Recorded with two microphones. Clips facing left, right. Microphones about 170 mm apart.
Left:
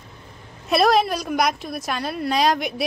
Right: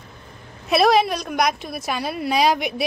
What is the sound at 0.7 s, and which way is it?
A woman's voice, centre (ahead or behind).